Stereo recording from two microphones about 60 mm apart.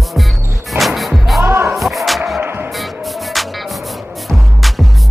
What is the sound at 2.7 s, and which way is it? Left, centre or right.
Music, centre.